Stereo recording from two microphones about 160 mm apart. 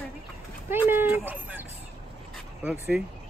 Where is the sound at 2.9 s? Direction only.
10° right (ahead or behind).